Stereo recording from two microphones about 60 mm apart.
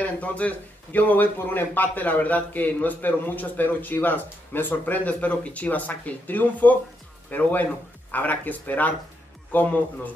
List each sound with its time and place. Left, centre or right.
0.0 s a man's voice: left